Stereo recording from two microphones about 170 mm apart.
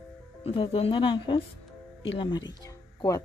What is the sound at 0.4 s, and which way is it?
A woman's voice, 35° left (ahead or behind).